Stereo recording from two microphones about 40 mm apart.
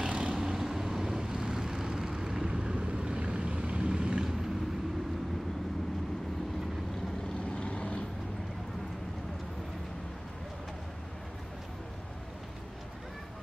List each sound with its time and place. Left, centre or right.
0.0 s vehicle: right
0.4 s vehicle: centre
7.5 s vehicle: left